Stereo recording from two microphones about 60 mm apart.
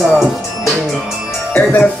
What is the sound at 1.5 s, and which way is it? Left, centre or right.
Speech, left.